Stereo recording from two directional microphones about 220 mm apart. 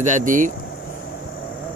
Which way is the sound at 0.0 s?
35° right (ahead or behind).